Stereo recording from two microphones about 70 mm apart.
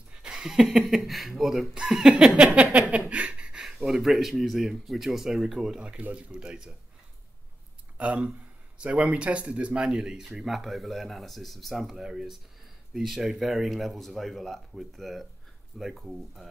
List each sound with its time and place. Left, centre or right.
0.1 s speech: centre
8.0 s speech: centre